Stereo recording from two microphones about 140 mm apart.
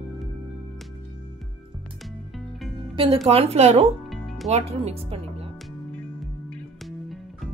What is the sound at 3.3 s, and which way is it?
Speech, 45° right (ahead or behind).